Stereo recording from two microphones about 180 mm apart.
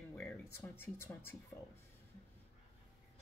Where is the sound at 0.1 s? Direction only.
10° left (ahead or behind).